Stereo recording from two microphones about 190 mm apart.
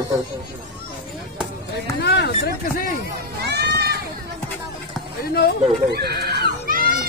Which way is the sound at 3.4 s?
60° right (ahead or behind).